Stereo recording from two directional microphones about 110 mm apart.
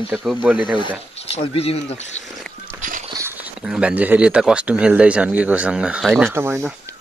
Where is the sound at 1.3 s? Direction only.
65° left (ahead or behind).